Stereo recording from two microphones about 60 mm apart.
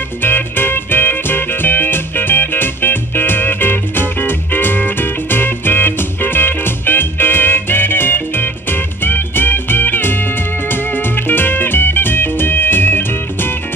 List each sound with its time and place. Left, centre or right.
0.2 s music: left
11.2 s music: left